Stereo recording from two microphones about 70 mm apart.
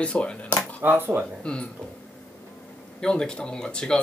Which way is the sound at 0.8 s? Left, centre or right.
Right.